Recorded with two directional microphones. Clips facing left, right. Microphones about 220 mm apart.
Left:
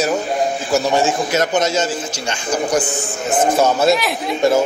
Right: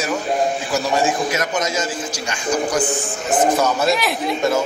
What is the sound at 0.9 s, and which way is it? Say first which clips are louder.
Speech: left 2 dB; 25° left (ahead or behind).